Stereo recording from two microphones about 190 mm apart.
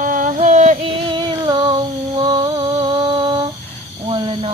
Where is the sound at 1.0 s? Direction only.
25° right (ahead or behind).